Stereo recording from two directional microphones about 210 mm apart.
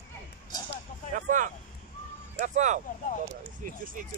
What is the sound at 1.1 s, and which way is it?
Vehicle, 40° right (ahead or behind).